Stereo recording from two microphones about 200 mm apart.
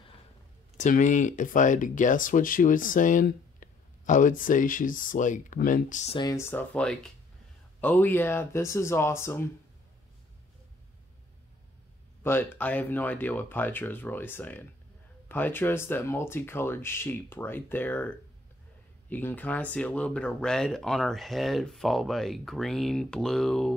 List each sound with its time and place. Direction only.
0.7 s speech: 40° left (ahead or behind)
6.1 s speech: 15° left (ahead or behind)
12.2 s speech: 10° left (ahead or behind)